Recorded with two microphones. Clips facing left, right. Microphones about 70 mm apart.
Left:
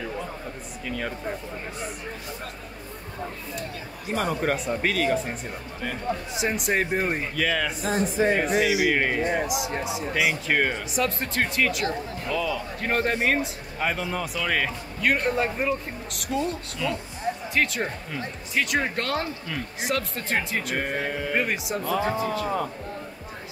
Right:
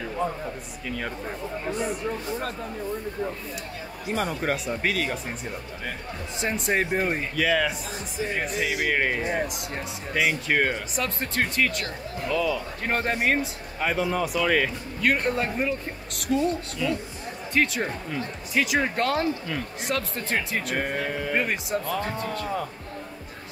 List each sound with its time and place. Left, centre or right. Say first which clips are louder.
0.8 s speech: left 1 dB; centre
4.1 s speech: left 1 dB; centre
7.8 s speech: left 9 dB; left
8.5 s speech: left 4 dB; centre